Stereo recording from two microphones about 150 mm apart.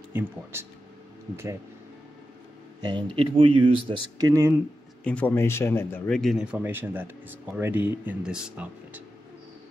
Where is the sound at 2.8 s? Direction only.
30° right (ahead or behind).